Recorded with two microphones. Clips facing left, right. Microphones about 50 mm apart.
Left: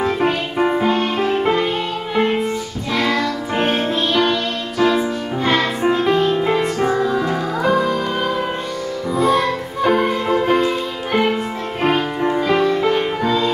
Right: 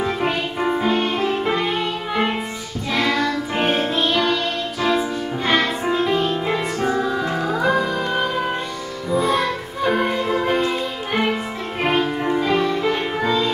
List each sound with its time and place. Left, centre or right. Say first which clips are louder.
0.0 s music: left 4 dB; centre
0.6 s music: left 6 dB; centre
0.8 s music: left 2 dB; centre
1.1 s music: left 3 dB; centre
2.9 s music: left 1 dB; centre
5.8 s music: left 4 dB; centre